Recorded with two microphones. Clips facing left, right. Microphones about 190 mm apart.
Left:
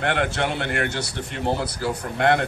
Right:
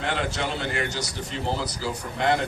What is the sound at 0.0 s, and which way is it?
Speech, 60° left (ahead or behind).